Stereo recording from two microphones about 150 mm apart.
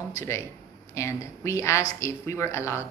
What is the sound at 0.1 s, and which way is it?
Speech, 20° left (ahead or behind).